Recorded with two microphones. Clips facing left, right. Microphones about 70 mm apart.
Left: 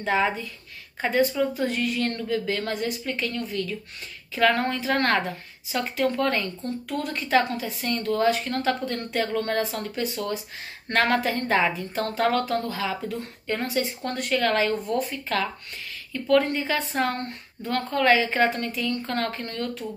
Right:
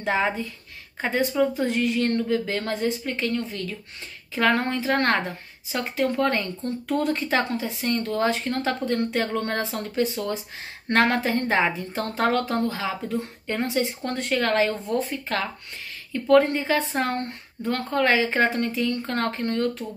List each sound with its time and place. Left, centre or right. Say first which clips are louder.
0.0 s speech: even; right